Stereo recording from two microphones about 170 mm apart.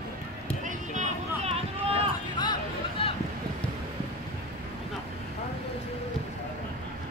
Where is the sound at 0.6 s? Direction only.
45° right (ahead or behind).